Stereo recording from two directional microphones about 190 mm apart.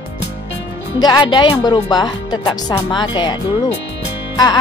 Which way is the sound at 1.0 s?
20° left (ahead or behind).